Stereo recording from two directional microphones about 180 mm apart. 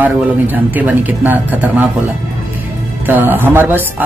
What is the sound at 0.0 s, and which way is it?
Speech, 10° right (ahead or behind).